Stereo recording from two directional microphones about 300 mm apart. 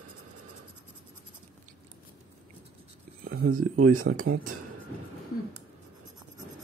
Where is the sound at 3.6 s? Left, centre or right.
Right.